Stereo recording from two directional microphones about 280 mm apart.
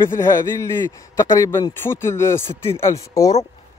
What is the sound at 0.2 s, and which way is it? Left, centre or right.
A man's voice, centre.